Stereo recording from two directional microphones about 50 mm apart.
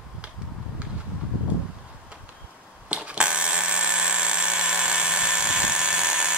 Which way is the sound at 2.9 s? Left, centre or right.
Right.